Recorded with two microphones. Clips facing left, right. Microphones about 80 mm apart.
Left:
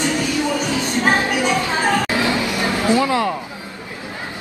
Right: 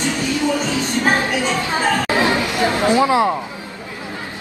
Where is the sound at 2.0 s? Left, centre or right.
Right.